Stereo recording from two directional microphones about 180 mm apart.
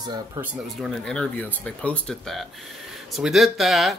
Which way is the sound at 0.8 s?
Centre (ahead or behind).